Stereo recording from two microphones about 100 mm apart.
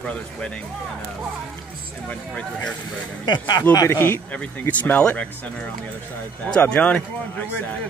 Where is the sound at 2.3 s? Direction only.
10° left (ahead or behind).